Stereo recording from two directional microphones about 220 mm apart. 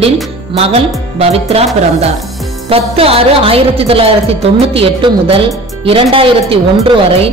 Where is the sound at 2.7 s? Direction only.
25° right (ahead or behind).